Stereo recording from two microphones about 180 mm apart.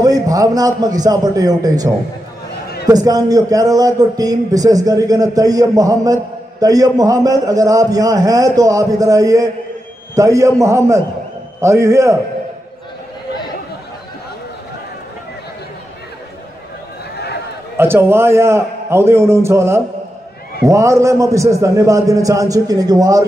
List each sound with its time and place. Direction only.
0.0 s a man's voice: 20° right (ahead or behind)
2.9 s a man's voice: 20° right (ahead or behind)
17.7 s a man's voice: 15° right (ahead or behind)